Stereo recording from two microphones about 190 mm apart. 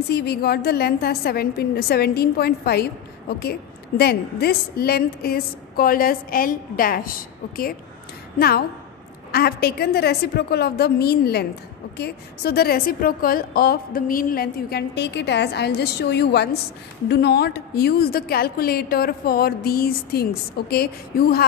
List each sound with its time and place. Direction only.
0.1 s a woman's voice: 55° left (ahead or behind)